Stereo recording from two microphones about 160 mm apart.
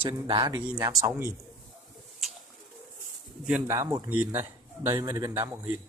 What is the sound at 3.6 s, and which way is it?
Speech, 20° right (ahead or behind).